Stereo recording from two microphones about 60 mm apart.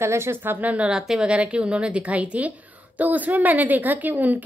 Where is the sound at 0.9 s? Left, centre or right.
Centre; by 4.4 s right.